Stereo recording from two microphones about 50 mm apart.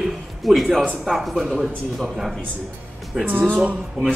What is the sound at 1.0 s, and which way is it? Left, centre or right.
Speech, centre.